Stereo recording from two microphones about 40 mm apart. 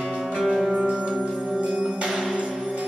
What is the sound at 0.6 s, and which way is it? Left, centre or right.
Music, right.